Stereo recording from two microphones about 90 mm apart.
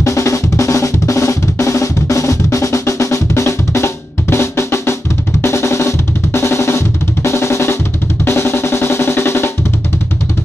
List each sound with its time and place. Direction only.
0.0 s drum: 35° left (ahead or behind)